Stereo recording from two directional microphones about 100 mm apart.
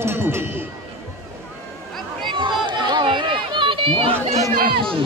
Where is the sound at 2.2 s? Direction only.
50° right (ahead or behind).